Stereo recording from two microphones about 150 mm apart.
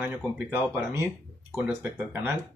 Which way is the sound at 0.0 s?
15° right (ahead or behind).